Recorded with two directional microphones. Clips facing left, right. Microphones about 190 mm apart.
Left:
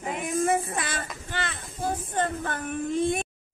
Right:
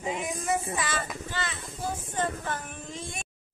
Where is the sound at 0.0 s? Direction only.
55° left (ahead or behind).